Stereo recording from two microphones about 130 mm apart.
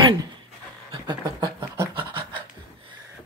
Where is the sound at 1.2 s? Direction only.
30° right (ahead or behind).